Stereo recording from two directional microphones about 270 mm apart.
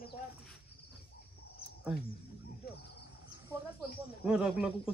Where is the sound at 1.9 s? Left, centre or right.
Centre.